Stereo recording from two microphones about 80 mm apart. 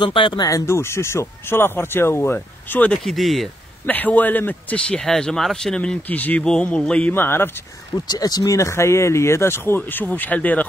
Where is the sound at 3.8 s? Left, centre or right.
Left.